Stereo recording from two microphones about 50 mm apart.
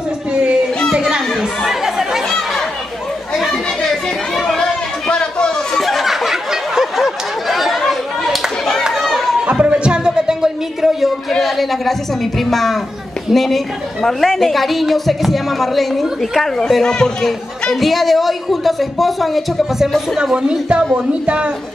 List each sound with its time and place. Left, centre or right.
0.3 s a woman's voice: centre
0.9 s children playing: centre
1.6 s chatter: centre
4.4 s chatter: centre
5.8 s a sound: centre
7.8 s a sound: centre
8.8 s chatter: centre
9.5 s a sound: right; by 11.9 s centre
12.4 s a woman's voice: centre
17.7 s a woman's voice: centre
20.2 s a woman's voice: centre